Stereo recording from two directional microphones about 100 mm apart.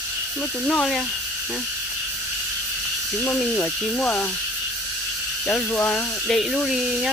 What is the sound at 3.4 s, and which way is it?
Speech, 15° left (ahead or behind).